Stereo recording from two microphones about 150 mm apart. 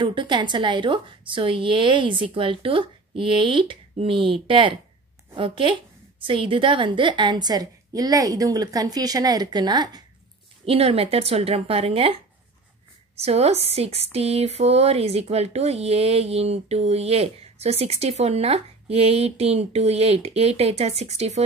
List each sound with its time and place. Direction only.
0.0 s a woman's voice: 30° right (ahead or behind)
10.6 s a woman's voice: 40° right (ahead or behind)
13.2 s speech: 45° right (ahead or behind)